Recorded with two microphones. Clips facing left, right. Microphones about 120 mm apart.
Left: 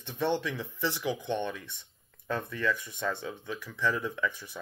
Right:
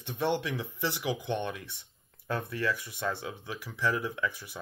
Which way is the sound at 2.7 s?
10° right (ahead or behind).